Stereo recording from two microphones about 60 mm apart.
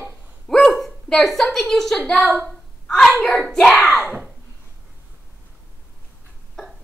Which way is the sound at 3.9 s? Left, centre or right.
Centre.